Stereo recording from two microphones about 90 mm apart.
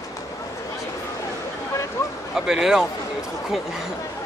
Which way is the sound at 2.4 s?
5° right (ahead or behind).